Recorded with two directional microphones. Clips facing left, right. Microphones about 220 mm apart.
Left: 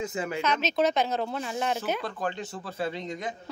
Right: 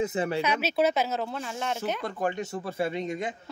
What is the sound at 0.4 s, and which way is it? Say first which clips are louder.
Speech: left 1 dB; 10° right (ahead or behind).